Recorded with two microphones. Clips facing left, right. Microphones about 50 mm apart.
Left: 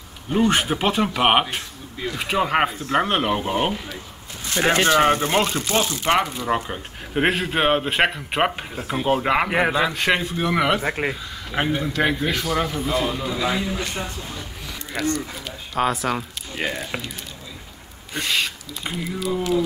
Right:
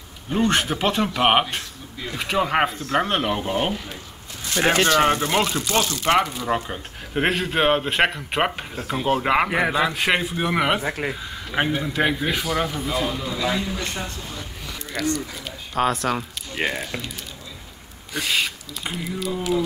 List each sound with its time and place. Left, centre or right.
0.3 s speech: centre
4.6 s speech: left
5.6 s speech: left
6.0 s a man's voice: centre
10.8 s speech: left
11.5 s speech: centre
16.6 s speech: right
18.2 s speech: centre